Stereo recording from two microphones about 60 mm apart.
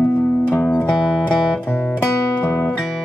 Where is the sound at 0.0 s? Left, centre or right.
Centre.